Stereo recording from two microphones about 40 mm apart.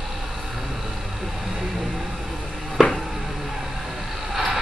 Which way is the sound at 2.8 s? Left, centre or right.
Centre.